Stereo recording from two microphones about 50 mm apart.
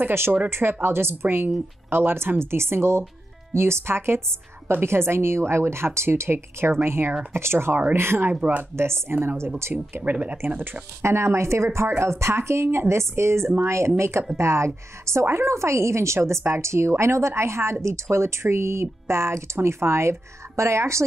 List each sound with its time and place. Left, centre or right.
0.0 s speech: right
8.3 s speech: right
8.7 s speech: right
9.9 s speech: right
10.6 s speech: right
11.1 s a woman's voice: right